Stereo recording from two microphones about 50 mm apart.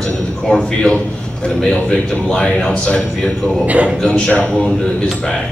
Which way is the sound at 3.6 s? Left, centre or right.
Right.